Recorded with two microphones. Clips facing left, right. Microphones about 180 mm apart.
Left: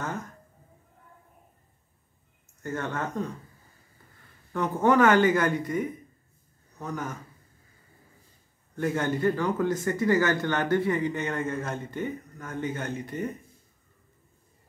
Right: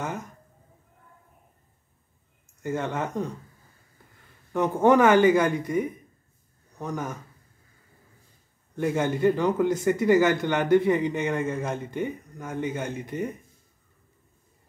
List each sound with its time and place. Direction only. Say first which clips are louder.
0.0 s speech: right 1 dB; 15° right (ahead or behind)
2.6 s speech: right 3 dB; 15° right (ahead or behind)
4.5 s speech: right 4 dB; 15° right (ahead or behind)
8.7 s speech: right 2 dB; 15° right (ahead or behind)